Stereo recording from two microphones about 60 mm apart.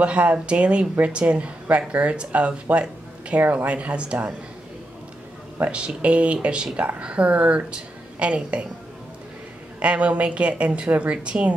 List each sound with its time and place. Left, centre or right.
0.0 s speech: right
5.7 s speech: centre
9.8 s speech: right